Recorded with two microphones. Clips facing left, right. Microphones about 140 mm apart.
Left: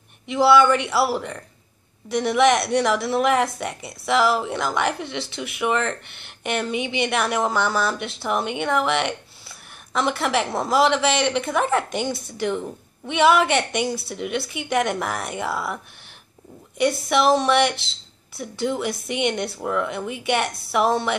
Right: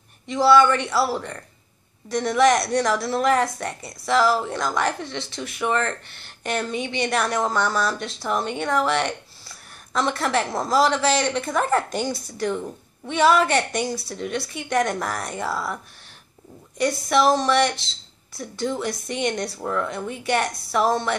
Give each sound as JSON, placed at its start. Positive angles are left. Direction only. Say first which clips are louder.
{"t": 0.3, "sound": "speech", "louder": "even", "side_deg": 5}
{"t": 17.1, "sound": "speech", "louder": "even", "side_deg": 5}